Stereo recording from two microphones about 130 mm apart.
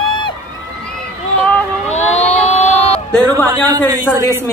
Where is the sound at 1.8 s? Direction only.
60° left (ahead or behind).